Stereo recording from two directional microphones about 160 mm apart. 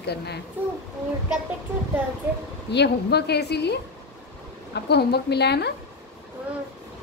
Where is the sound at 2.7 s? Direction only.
90° left.